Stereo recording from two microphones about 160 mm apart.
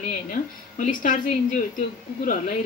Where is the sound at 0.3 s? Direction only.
55° left (ahead or behind).